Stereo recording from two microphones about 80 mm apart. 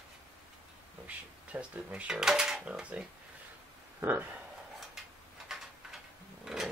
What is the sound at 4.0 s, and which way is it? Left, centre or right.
Speech, right.